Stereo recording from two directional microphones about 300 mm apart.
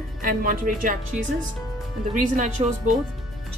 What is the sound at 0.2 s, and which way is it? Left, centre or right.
Speech, right.